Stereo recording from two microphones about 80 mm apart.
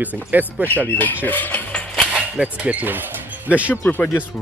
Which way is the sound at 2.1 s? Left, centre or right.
Centre.